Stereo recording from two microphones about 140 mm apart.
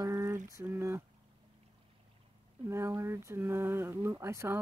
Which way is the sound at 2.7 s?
20° right (ahead or behind).